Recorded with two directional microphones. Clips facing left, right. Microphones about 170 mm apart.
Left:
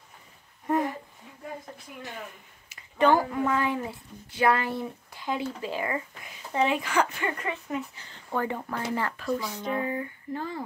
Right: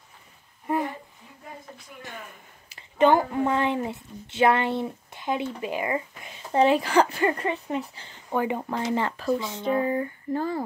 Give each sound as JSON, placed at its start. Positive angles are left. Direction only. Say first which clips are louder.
{"t": 0.7, "sound": "speech", "louder": "left 1 dB", "side_deg": 0}
{"t": 3.0, "sound": "a woman's voice", "louder": "right 3 dB", "side_deg": -20}
{"t": 6.5, "sound": "speech", "louder": "right 6 dB", "side_deg": -35}
{"t": 8.3, "sound": "a woman's voice", "louder": "right 4 dB", "side_deg": -15}